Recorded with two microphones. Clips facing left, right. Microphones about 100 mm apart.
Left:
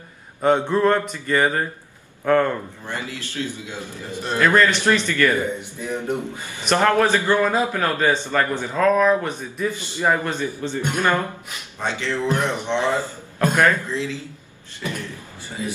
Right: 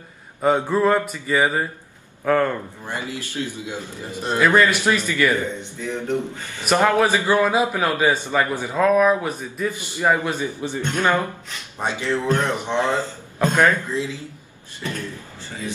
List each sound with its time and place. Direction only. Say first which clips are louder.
0.4 s speech: left 1 dB; 5° right (ahead or behind)
2.9 s a man's voice: right 1 dB; 15° right (ahead or behind)
5.4 s a man's voice: left 1 dB; 15° left (ahead or behind)
6.6 s a man's voice: even; 10° right (ahead or behind)
9.8 s a man's voice: right 2 dB; 15° right (ahead or behind)
12.3 s a man's voice: right 1 dB; 15° left (ahead or behind)
12.6 s a man's voice: even; 15° right (ahead or behind)
14.8 s a sound: even; 15° left (ahead or behind)